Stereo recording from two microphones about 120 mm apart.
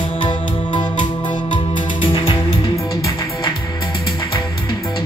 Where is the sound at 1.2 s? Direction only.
40° left (ahead or behind).